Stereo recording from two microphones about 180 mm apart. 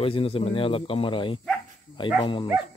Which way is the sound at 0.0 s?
30° left (ahead or behind).